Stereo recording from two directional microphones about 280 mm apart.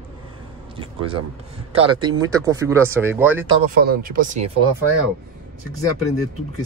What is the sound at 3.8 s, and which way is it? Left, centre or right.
Speech, right.